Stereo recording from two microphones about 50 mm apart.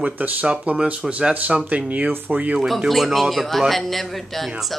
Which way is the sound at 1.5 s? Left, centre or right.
Right.